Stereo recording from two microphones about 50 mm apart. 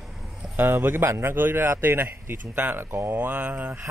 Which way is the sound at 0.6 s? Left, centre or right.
Right.